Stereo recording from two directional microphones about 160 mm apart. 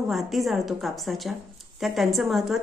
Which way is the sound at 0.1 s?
Centre (ahead or behind).